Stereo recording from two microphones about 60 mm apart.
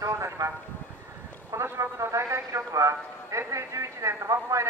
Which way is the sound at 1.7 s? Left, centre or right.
Right.